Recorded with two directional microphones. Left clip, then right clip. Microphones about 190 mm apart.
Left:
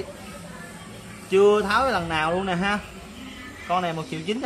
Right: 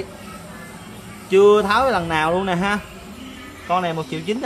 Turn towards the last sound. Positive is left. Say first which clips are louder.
# right 4 dB
turn(degrees=-10)  # may be behind; listen again after turning